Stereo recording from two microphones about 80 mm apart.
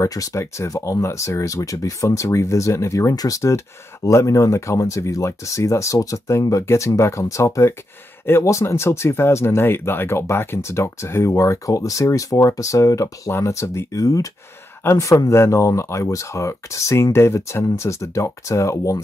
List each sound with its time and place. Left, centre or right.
0.0 s speech: left